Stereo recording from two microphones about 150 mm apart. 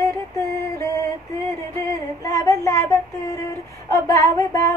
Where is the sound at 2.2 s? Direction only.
20° left (ahead or behind).